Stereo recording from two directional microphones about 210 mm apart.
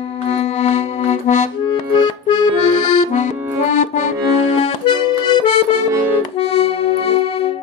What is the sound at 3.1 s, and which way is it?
Accordion, 35° left (ahead or behind).